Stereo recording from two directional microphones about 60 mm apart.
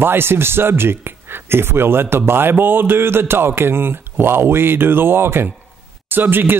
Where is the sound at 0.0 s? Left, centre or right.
Right.